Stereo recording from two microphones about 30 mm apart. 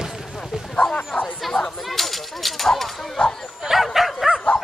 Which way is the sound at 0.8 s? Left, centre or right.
Centre.